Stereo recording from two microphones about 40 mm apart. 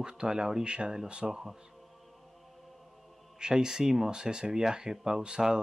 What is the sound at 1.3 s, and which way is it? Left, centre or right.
Speech, centre.